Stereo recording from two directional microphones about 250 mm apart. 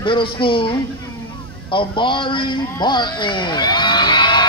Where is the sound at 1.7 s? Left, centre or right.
Centre.